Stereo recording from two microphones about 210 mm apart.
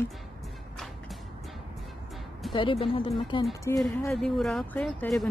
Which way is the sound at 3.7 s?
15° left (ahead or behind).